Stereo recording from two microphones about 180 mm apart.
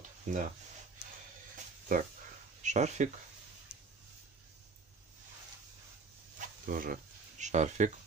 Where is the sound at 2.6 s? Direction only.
40° right (ahead or behind).